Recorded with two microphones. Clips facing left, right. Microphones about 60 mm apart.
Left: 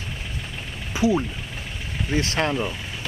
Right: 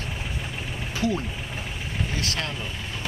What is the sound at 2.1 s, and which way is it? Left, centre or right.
Speech, left.